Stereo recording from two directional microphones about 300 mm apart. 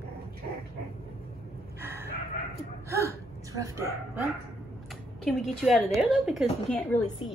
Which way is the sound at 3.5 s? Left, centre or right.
Centre.